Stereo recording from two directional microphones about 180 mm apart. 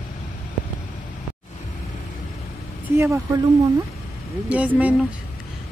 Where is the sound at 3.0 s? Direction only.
15° right (ahead or behind).